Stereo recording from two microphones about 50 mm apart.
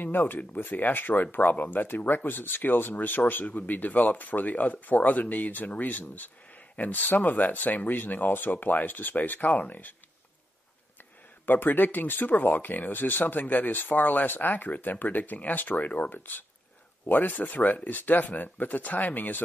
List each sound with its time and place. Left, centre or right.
0.0 s speech: left
11.4 s speech: left